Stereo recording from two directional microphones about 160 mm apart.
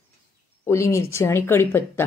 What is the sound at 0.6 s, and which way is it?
A woman's voice, 15° left (ahead or behind).